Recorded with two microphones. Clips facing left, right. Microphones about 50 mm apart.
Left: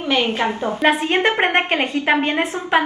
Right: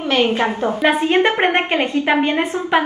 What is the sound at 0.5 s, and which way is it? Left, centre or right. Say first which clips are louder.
Speech: right 2 dB; right.